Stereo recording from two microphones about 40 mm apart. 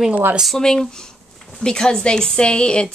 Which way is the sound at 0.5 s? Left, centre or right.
Centre.